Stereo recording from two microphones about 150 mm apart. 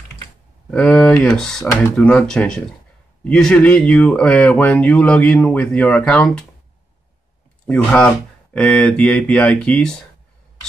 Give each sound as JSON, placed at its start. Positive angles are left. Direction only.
{"t": 0.7, "sound": "speech", "side_deg": 5}
{"t": 1.7, "sound": "speech", "side_deg": 20}
{"t": 2.0, "sound": "speech", "side_deg": 5}
{"t": 7.6, "sound": "speech", "side_deg": 5}